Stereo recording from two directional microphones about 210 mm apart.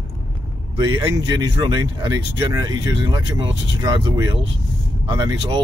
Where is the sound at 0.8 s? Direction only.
20° right (ahead or behind).